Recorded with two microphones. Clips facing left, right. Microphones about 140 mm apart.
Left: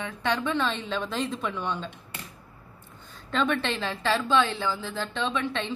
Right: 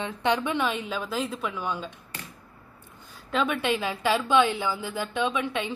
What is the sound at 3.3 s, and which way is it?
A woman's voice, 10° right (ahead or behind).